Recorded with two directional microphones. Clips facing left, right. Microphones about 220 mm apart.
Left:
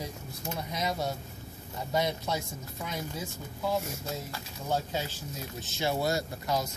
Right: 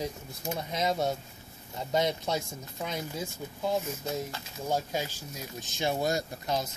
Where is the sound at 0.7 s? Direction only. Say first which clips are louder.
Right 4 dB; 25° right (ahead or behind).